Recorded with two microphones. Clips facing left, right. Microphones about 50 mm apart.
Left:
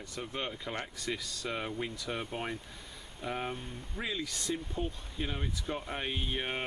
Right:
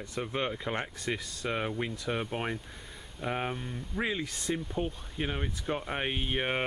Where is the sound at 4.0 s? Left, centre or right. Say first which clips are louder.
Right 4 dB; right.